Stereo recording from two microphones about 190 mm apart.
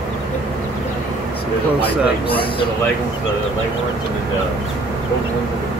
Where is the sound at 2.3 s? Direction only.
25° left (ahead or behind).